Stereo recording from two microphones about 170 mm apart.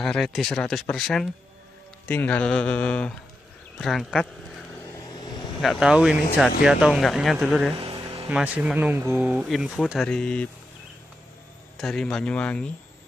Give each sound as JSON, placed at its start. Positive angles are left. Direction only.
{"t": 0.0, "sound": "speech", "side_deg": 0}
{"t": 4.9, "sound": "vehicle", "side_deg": 25}
{"t": 5.6, "sound": "speech", "side_deg": 0}
{"t": 7.8, "sound": "a sound", "side_deg": -35}
{"t": 8.3, "sound": "speech", "side_deg": -5}
{"t": 11.7, "sound": "speech", "side_deg": 0}